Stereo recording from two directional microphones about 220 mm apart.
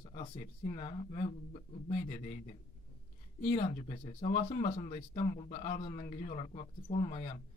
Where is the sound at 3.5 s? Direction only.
35° left (ahead or behind).